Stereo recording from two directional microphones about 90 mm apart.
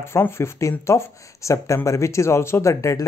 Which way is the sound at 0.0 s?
30° left (ahead or behind).